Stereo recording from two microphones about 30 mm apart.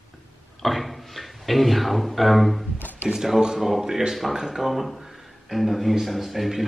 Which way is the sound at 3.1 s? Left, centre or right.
Centre.